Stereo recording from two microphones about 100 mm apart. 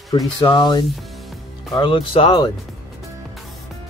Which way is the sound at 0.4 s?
50° left (ahead or behind).